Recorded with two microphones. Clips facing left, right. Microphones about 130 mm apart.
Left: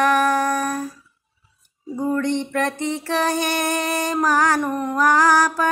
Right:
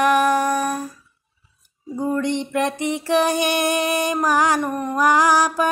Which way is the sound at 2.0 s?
10° right (ahead or behind).